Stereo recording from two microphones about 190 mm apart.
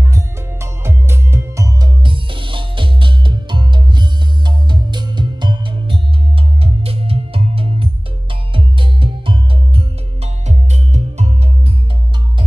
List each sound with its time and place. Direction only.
0.1 s music: 15° right (ahead or behind); by 11.3 s 35° right (ahead or behind)